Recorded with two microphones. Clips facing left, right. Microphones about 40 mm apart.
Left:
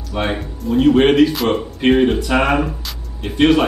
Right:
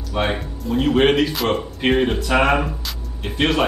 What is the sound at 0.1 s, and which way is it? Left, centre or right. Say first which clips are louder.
A man's voice: left 1 dB; centre.